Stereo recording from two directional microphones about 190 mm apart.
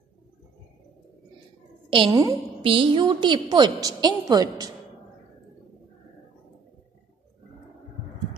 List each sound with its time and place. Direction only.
1.9 s a woman's voice: 20° right (ahead or behind)